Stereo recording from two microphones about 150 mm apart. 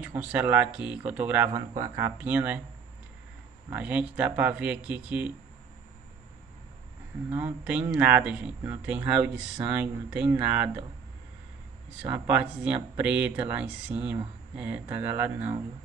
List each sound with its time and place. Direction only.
0.0 s speech: 10° right (ahead or behind)
3.7 s speech: 10° right (ahead or behind)
7.3 s speech: 10° right (ahead or behind)
12.1 s speech: 10° right (ahead or behind)